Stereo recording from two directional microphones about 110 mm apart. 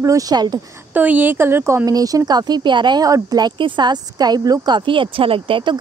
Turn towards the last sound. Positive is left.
turn(degrees=-50)  # may be behind; listen again after turning